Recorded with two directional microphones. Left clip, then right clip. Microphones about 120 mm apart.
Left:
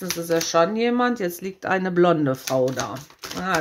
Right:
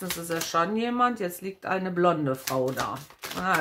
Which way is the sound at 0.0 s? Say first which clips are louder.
Left 8 dB; 35° left (ahead or behind).